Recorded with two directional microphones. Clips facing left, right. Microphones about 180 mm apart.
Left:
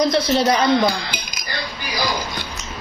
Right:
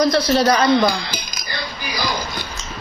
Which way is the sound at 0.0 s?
20° left (ahead or behind).